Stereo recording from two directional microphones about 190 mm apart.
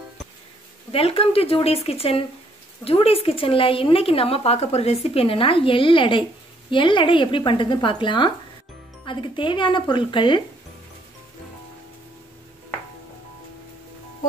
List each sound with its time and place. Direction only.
0.9 s speech: 30° left (ahead or behind)